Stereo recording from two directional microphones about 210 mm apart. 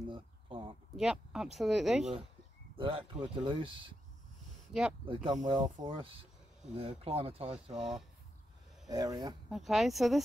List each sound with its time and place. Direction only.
0.1 s a sound: 25° right (ahead or behind)
0.9 s speech: centre (ahead or behind)
2.8 s speech: 25° right (ahead or behind)
4.7 s speech: centre (ahead or behind)
5.0 s speech: 25° right (ahead or behind)
7.7 s speech: centre (ahead or behind)
8.8 s speech: 20° right (ahead or behind)
9.5 s speech: centre (ahead or behind)